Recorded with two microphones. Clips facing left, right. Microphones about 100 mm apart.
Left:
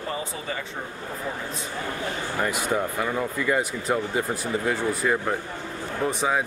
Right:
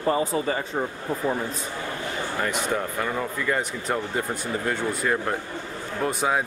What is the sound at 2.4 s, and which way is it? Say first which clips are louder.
Speech: left 2 dB; 5° left (ahead or behind).